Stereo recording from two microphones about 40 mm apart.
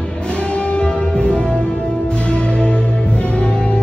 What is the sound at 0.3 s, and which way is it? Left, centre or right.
Music, left.